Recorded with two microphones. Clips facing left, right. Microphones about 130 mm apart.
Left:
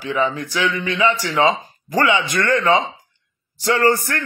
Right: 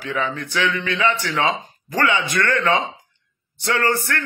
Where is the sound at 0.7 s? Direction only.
10° left (ahead or behind).